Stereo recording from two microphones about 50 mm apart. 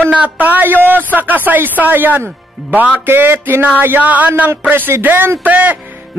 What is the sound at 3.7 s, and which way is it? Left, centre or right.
Speech, right.